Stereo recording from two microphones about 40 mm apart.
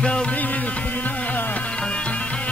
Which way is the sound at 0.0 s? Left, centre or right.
Left.